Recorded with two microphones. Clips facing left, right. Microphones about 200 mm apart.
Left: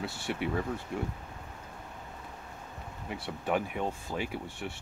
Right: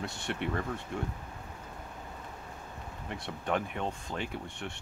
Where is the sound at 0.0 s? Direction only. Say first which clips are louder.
Left 1 dB; 5° left (ahead or behind).